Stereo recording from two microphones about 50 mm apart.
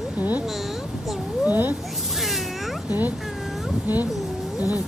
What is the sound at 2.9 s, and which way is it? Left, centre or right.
Cat, right.